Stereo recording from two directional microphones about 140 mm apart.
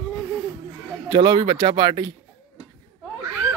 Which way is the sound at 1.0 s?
30° right (ahead or behind).